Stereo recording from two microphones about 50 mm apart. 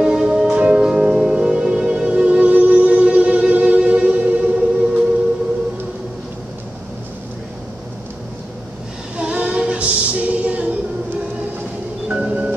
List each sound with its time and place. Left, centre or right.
0.0 s music: centre
9.1 s female singing: right
12.1 s vehicle: right